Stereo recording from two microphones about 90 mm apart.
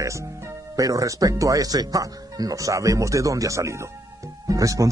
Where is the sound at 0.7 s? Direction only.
40° right (ahead or behind).